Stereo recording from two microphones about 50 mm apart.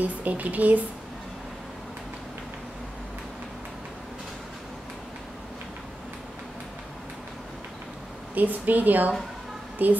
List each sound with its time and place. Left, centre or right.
0.0 s speech: right
8.4 s speech: right